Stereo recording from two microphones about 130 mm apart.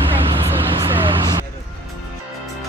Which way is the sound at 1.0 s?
30° right (ahead or behind).